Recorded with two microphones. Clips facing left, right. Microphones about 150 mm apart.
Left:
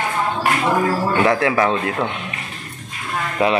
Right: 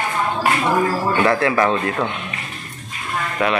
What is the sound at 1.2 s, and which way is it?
Speech, 15° left (ahead or behind).